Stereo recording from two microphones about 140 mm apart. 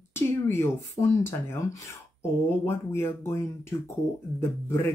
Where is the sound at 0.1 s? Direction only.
15° left (ahead or behind).